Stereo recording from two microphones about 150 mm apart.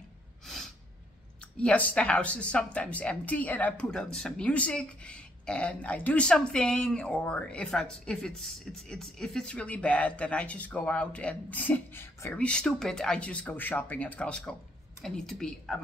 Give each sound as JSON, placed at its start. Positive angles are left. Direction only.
{"t": 1.6, "sound": "a woman's voice", "side_deg": 10}